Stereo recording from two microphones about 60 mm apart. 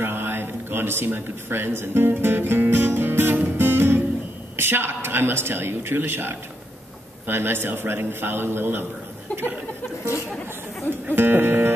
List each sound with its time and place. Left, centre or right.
0.0 s a sound: right
4.6 s speech: right
9.3 s speech: left
11.1 s speech: right